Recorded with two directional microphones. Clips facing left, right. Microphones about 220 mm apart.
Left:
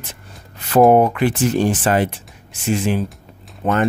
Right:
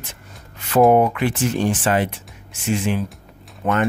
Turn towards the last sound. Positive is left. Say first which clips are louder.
# left 2 dB
turn(degrees=25)  # may be behind; listen again after turning